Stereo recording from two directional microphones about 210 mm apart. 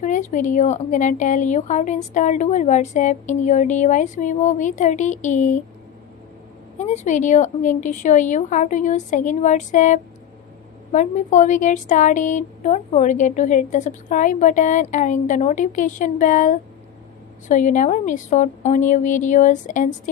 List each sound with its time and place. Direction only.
0.0 s speech: 40° left (ahead or behind)
6.8 s speech: 35° left (ahead or behind)